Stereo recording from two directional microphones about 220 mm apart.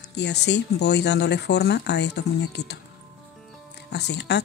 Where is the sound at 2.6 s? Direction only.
90° left.